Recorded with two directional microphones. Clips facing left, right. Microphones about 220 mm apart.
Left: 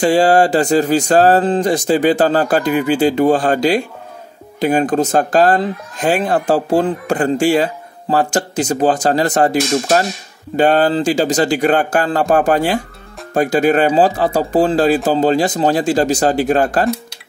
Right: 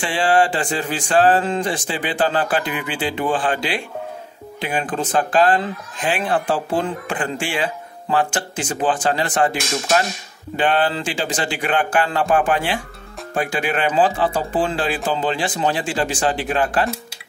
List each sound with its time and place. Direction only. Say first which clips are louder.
0.0 s speech: left 7 dB; 40° left (ahead or behind)